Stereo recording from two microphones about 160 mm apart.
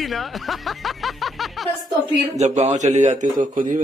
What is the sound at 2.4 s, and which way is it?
A man's voice, 45° right (ahead or behind).